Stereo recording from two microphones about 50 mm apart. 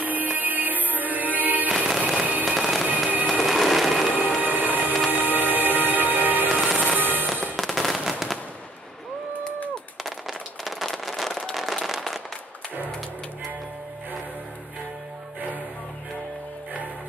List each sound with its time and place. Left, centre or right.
0.0 s music: right
1.7 s music: centre
2.9 s music: right
3.3 s a sound: centre
4.4 s music: right
7.5 s firecracker: centre
8.0 s fireworks: centre
10.0 s a sound: centre
10.9 s vehicle: centre
11.5 s a sound: centre